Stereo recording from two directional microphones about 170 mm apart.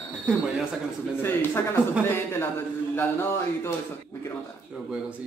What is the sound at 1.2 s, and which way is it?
Speech, 10° left (ahead or behind).